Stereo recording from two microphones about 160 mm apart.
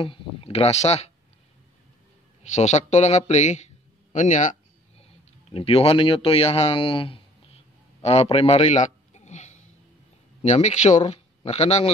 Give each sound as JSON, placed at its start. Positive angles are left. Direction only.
{"t": 0.0, "sound": "speech", "side_deg": 35}
{"t": 2.5, "sound": "speech", "side_deg": 45}
{"t": 5.5, "sound": "a man's voice", "side_deg": 35}